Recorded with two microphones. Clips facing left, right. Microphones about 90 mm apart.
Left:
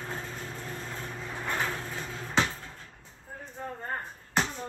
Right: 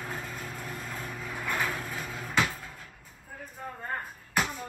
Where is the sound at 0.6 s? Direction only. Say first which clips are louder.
Even; 30° left (ahead or behind).